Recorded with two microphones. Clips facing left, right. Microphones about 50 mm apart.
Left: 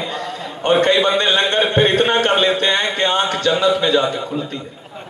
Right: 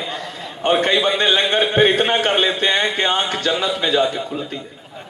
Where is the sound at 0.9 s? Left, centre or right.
Centre.